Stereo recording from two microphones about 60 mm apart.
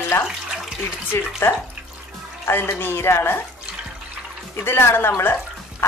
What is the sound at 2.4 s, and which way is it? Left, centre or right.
Speech, left.